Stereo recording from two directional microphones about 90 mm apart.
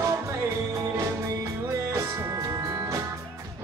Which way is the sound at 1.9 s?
30° right (ahead or behind).